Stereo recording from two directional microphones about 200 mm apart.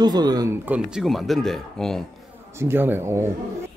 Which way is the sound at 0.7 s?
5° right (ahead or behind).